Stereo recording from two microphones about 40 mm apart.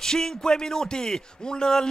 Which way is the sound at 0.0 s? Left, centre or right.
Centre.